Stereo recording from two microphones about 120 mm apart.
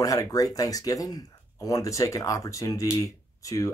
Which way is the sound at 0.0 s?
30° left (ahead or behind).